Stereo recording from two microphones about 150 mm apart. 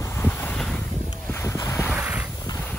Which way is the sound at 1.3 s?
20° left (ahead or behind).